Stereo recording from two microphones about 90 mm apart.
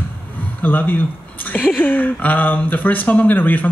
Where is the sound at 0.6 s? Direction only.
20° left (ahead or behind).